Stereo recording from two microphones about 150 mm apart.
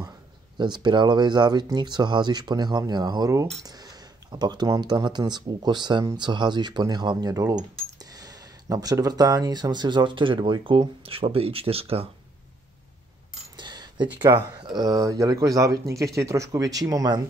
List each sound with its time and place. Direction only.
0.6 s speech: 30° right (ahead or behind)
13.6 s a sound: 30° right (ahead or behind)
14.0 s speech: 10° right (ahead or behind)
14.8 s speech: 25° right (ahead or behind)